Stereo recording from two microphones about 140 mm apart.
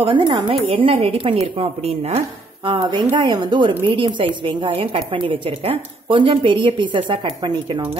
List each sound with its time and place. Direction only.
0.0 s a woman's voice: 35° right (ahead or behind)